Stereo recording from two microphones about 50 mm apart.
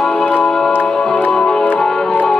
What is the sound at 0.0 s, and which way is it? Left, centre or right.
Music, centre.